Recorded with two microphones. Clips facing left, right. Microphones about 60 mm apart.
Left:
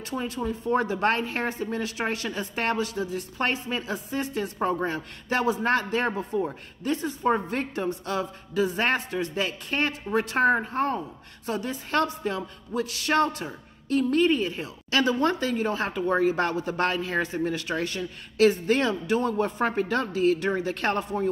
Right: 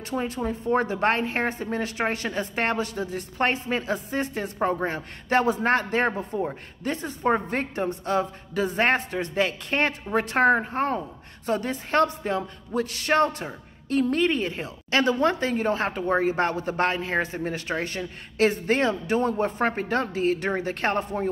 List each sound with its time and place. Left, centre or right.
0.2 s speech: right